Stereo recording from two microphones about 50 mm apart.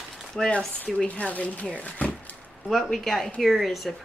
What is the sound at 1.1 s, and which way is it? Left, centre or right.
Speech, left.